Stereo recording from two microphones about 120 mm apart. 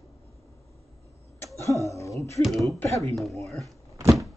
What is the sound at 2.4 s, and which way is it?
Speech, centre (ahead or behind).